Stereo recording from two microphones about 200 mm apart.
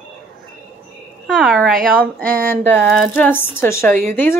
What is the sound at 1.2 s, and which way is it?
A woman's voice, centre (ahead or behind).